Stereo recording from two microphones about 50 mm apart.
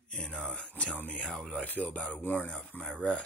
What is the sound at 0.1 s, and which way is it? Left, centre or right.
Speech, centre.